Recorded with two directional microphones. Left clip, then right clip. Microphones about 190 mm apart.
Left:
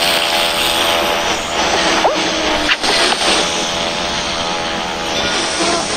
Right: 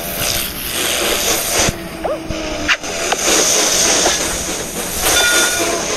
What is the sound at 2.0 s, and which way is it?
Vehicle, 35° left (ahead or behind).